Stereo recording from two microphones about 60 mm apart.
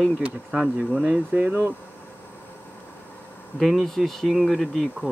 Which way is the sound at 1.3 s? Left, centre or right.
Right.